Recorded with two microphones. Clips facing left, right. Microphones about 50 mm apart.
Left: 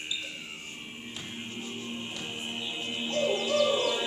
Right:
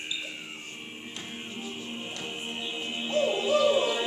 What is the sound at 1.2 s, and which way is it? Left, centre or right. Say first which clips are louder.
Music: right 1 dB; centre.